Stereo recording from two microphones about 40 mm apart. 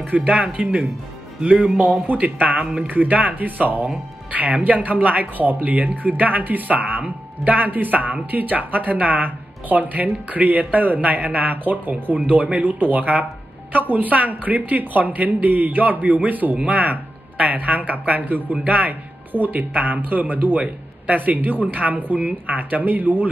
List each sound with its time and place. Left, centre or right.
0.1 s speech: right